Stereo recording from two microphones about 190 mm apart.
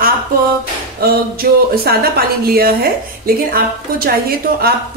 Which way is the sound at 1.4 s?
50° right (ahead or behind).